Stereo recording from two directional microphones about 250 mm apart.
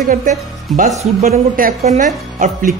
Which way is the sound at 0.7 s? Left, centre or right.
Right.